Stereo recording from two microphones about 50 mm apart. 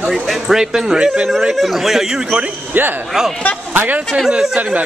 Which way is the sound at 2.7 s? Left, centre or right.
Right.